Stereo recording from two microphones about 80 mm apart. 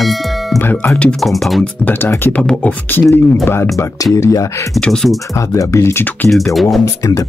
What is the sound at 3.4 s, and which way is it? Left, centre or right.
Speech, left.